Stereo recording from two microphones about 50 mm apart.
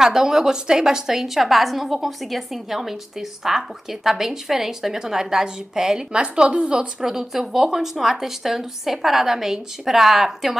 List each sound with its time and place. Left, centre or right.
0.0 s a woman's voice: centre